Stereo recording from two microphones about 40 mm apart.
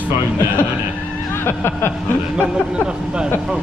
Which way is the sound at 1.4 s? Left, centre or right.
Left.